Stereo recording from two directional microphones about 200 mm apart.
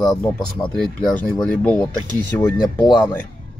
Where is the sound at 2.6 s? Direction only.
20° left (ahead or behind).